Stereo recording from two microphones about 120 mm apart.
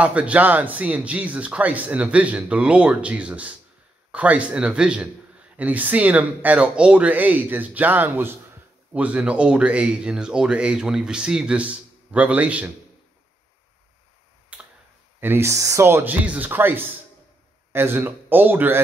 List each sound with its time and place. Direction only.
0.0 s speech: 10° right (ahead or behind)
14.5 s tick-tock: 10° right (ahead or behind)
15.1 s speech: 20° right (ahead or behind)